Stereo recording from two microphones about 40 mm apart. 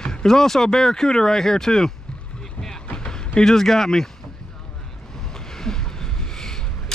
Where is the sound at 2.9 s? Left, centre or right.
Left.